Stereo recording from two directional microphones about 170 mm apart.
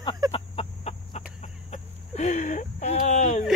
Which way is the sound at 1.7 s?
45° left (ahead or behind).